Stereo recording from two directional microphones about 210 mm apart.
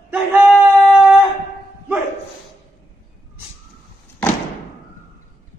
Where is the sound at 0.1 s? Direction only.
5° right (ahead or behind).